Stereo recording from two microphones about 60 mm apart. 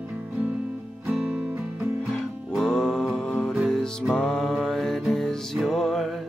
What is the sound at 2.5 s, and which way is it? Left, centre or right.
Music, centre.